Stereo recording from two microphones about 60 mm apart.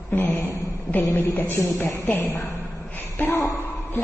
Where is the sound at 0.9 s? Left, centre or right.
Left.